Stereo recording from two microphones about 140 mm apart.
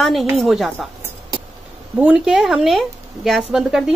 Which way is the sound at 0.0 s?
Centre (ahead or behind).